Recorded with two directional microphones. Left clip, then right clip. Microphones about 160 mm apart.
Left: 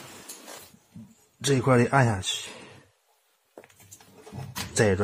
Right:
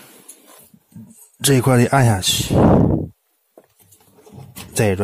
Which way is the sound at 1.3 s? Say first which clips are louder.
Right 6 dB; 90° right.